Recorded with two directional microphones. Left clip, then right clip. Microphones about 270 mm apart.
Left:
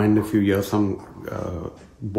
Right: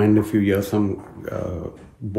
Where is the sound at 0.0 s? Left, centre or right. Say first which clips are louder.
Right 2 dB; centre.